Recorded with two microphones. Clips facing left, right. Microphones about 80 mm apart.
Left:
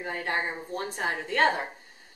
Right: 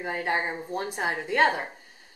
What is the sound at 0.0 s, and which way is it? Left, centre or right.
Speech, centre.